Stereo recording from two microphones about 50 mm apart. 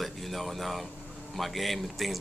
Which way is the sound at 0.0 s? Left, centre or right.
Centre.